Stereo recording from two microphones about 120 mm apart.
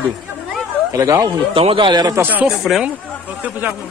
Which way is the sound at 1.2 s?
50° right (ahead or behind).